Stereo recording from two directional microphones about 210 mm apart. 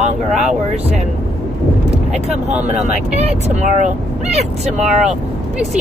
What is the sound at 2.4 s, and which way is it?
Speech, 35° right (ahead or behind).